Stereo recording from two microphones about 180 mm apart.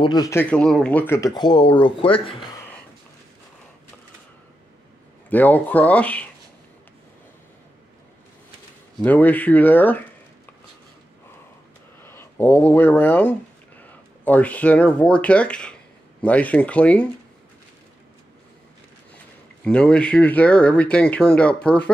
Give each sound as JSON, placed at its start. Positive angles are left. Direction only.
{"t": 0.0, "sound": "speech", "side_deg": 20}
{"t": 5.3, "sound": "speech", "side_deg": 10}
{"t": 9.0, "sound": "speech", "side_deg": 10}
{"t": 12.0, "sound": "speech", "side_deg": 10}
{"t": 19.6, "sound": "speech", "side_deg": 5}